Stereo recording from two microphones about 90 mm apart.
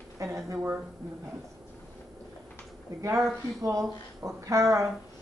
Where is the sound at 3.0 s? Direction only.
35° right (ahead or behind).